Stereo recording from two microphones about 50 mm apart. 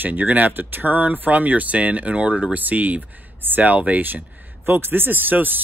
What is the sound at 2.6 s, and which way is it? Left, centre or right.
Speech, right.